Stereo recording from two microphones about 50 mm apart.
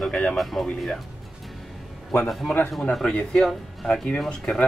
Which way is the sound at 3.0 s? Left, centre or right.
Centre.